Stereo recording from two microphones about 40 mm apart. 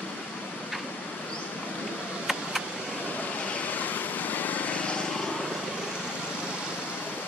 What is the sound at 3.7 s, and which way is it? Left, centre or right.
Vehicle, left.